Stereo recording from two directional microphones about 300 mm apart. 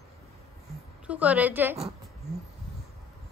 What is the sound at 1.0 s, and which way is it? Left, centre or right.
Speech, centre.